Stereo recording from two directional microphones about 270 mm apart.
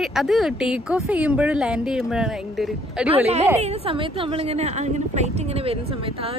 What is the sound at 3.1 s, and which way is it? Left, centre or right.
Speech, right.